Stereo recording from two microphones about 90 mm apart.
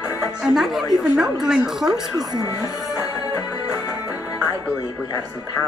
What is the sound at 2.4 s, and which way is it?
Speech, 45° left (ahead or behind).